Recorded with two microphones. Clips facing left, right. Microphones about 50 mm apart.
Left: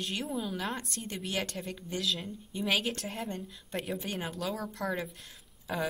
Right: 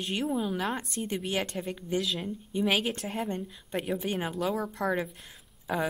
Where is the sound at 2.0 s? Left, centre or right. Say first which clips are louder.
Right 2 dB; centre.